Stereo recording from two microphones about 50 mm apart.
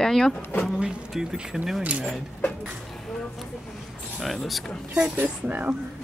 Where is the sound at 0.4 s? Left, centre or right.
Left.